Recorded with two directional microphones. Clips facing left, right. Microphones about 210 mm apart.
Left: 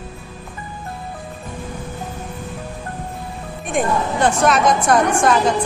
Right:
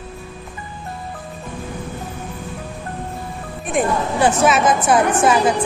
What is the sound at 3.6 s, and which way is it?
A woman's voice, centre (ahead or behind).